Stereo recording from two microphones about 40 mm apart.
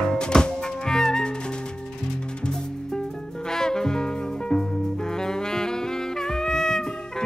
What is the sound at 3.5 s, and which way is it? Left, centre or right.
Music, centre.